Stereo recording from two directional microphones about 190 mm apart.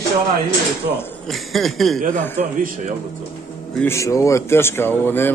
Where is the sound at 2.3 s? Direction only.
45° right (ahead or behind).